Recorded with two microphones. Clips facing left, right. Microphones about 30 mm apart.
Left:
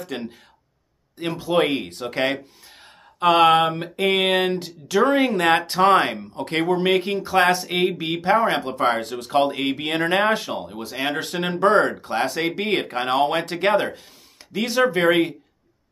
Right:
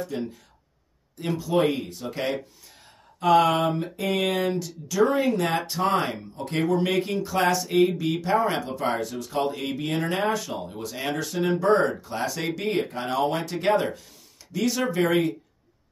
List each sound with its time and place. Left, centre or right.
0.1 s speech: left
1.1 s speech: left
6.8 s speech: left
11.1 s speech: left
12.1 s speech: left
12.4 s speech: left
12.6 s speech: left
13.1 s speech: left